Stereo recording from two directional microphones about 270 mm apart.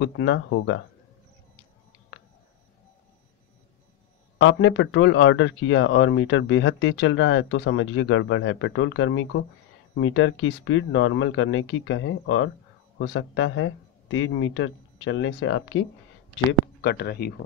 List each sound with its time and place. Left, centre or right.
0.0 s speech: left
4.4 s speech: left
16.8 s speech: left